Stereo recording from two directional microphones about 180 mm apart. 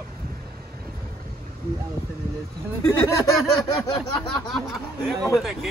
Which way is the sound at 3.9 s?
25° left (ahead or behind).